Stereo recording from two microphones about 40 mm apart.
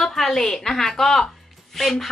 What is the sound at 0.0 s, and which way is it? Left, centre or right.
A woman's voice, centre.